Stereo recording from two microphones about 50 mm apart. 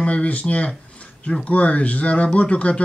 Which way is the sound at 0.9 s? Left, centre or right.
Left.